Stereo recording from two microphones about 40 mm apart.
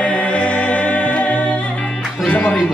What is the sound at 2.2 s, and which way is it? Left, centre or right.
Music, left.